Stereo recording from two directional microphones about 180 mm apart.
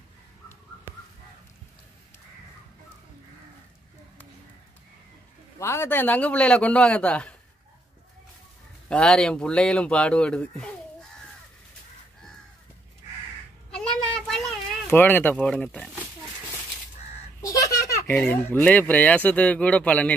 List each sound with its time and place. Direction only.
5.6 s speech: 15° left (ahead or behind)
8.8 s speech: 5° left (ahead or behind)
13.7 s a sound: 5° left (ahead or behind)
14.9 s speech: 10° left (ahead or behind)
17.4 s a sound: 20° left (ahead or behind)
18.1 s speech: 10° left (ahead or behind)